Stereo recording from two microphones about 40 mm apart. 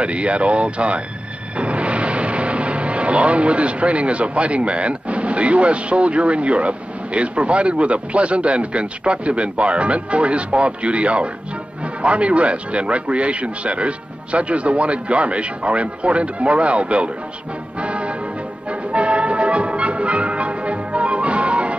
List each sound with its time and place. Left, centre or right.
0.0 s a man's voice: right
17.7 s music: right